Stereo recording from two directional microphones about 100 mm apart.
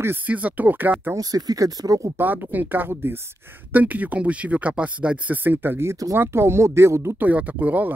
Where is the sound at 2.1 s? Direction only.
20° right (ahead or behind).